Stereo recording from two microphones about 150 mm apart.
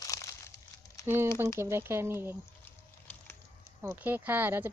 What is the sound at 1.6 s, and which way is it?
Speech, 15° right (ahead or behind).